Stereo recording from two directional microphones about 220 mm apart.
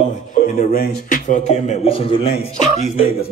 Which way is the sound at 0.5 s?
40° left (ahead or behind).